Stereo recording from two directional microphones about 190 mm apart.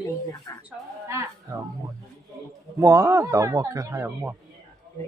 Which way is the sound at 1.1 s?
15° right (ahead or behind).